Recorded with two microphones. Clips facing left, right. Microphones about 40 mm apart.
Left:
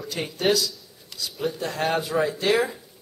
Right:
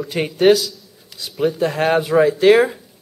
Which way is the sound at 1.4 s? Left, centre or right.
Centre.